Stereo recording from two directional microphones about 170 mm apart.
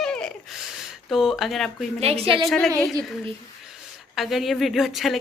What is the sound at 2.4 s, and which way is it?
A woman's voice, 5° left (ahead or behind).